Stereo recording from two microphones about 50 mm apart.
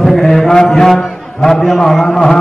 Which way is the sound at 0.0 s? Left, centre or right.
Centre.